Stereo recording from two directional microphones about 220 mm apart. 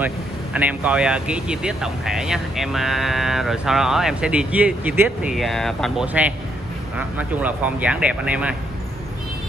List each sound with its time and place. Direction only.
0.0 s speech: 5° right (ahead or behind)